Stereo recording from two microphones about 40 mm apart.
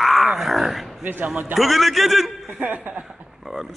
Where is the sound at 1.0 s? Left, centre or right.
Right.